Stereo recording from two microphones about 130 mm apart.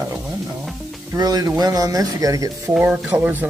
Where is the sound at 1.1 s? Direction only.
30° right (ahead or behind).